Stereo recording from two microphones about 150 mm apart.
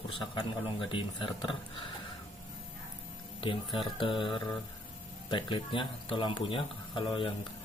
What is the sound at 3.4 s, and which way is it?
Speech, 35° left (ahead or behind).